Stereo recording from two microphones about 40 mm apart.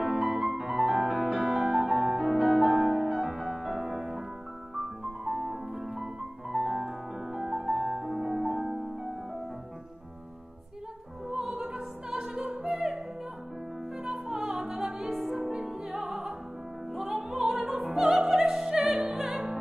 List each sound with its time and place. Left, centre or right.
0.0 s music: centre
11.2 s opera: centre
14.0 s music: centre
15.4 s music: centre